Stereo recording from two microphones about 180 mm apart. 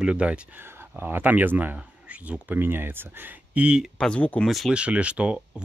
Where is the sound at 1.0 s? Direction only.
10° right (ahead or behind).